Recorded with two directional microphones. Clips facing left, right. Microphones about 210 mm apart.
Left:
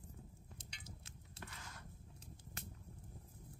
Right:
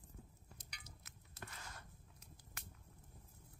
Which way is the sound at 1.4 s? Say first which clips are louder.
Even; 40° right (ahead or behind).